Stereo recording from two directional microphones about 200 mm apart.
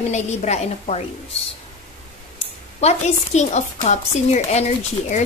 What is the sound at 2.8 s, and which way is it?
A woman's voice, 35° left (ahead or behind).